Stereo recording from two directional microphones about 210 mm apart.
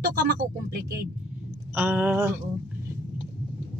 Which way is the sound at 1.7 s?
5° right (ahead or behind).